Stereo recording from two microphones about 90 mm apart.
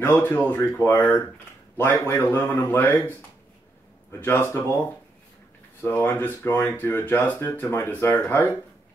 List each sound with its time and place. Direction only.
0.0 s speech: 25° left (ahead or behind)
4.2 s speech: 20° left (ahead or behind)